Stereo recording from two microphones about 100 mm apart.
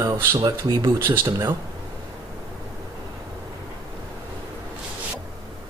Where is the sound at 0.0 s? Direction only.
25° right (ahead or behind).